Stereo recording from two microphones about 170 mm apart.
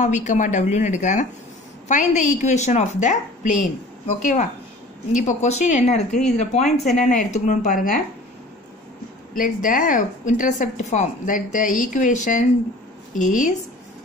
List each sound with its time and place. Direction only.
0.0 s a woman's voice: 45° left (ahead or behind)
9.4 s a woman's voice: 50° left (ahead or behind)